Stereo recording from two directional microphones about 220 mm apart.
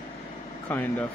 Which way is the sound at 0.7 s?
5° left (ahead or behind).